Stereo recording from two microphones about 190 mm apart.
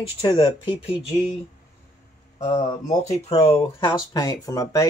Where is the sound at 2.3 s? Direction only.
25° left (ahead or behind).